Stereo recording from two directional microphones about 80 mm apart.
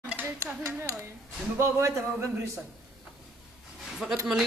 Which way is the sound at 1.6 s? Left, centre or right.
Right.